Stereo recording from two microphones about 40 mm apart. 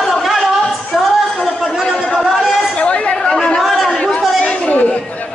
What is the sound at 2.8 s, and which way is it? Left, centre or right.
Chatter, left.